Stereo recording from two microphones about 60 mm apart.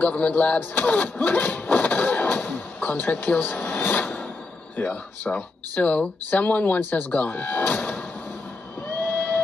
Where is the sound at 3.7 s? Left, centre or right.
Left.